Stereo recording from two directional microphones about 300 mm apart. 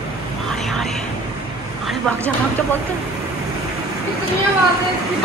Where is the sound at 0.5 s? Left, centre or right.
Centre.